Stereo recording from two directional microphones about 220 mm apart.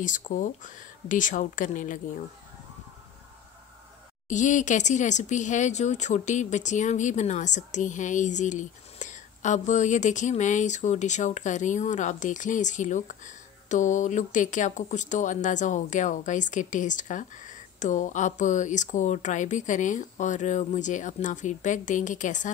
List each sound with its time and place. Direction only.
0.0 s speech: 35° left (ahead or behind)
4.3 s speech: 35° left (ahead or behind)